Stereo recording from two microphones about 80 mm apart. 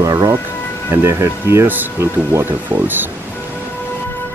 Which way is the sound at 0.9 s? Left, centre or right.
Right.